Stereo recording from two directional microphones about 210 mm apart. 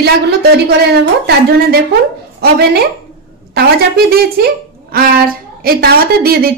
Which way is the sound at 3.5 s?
45° right (ahead or behind).